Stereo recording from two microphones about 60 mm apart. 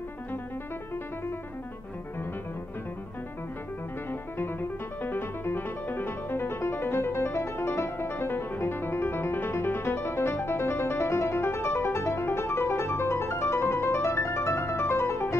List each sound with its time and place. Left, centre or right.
4.1 s music: left